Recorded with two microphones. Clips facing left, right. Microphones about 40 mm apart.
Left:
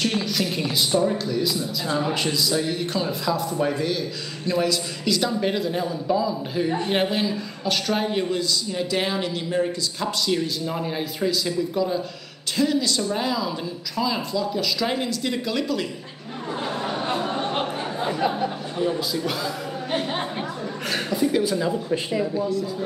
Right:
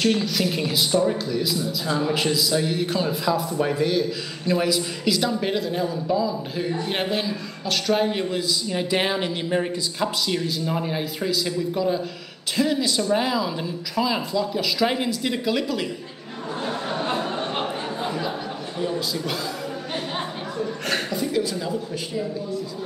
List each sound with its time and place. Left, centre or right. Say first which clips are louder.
0.1 s a man's voice: right 2 dB; centre
8.6 s speech: right 2 dB; right
10.2 s speech: left 1 dB; centre
16.6 s a sound: right 1 dB; left
21.1 s speech: left 3 dB; centre